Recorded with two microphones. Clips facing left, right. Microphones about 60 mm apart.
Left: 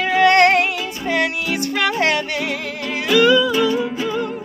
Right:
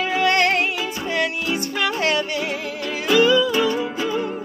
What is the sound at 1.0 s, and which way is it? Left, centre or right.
Music, left.